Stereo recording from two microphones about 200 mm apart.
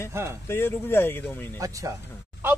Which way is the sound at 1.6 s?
15° right (ahead or behind).